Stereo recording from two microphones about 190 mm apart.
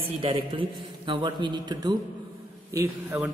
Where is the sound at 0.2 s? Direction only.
25° right (ahead or behind).